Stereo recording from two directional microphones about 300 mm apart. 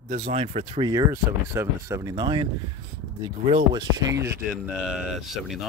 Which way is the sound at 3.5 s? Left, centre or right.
Centre.